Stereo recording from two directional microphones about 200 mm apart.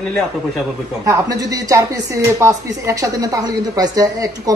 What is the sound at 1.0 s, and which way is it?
Speech, 15° right (ahead or behind).